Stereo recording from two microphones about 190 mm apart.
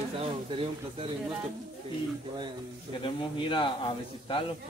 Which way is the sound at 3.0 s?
25° left (ahead or behind).